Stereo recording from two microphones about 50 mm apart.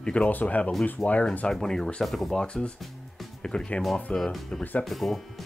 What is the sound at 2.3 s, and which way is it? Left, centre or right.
Speech, centre.